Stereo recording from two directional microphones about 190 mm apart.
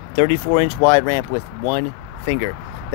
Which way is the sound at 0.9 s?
20° left (ahead or behind).